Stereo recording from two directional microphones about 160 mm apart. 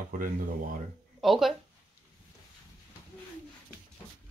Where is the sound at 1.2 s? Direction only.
Centre (ahead or behind).